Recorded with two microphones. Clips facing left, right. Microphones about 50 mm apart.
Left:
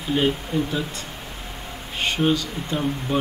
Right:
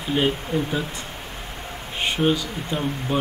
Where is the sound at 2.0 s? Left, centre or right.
Centre.